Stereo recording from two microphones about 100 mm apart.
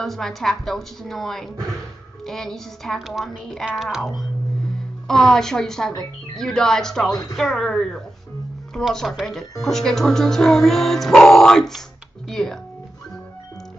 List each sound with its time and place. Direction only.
0.0 s speech: 5° left (ahead or behind)